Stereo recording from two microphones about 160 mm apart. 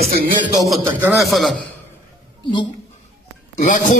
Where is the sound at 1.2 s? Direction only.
Centre (ahead or behind).